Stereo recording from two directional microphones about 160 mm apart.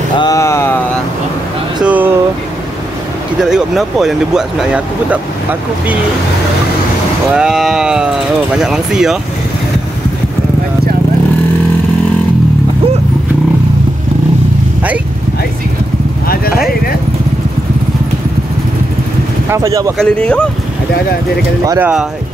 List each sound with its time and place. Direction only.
0.2 s speech: 20° left (ahead or behind)
1.9 s vehicle: 10° right (ahead or behind)
3.3 s speech: 5° right (ahead or behind)
7.3 s speech: 5° right (ahead or behind)
19.5 s speech: 20° right (ahead or behind)
20.0 s speech: 5° left (ahead or behind)
21.6 s speech: 10° right (ahead or behind)